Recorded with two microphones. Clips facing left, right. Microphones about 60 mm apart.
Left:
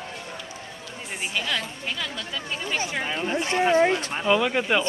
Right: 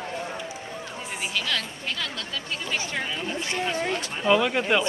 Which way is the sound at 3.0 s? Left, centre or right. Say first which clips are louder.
Left 4 dB; left.